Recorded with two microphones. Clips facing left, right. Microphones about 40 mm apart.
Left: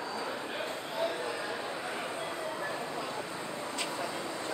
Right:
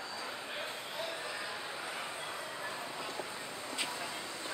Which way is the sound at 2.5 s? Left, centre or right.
Left.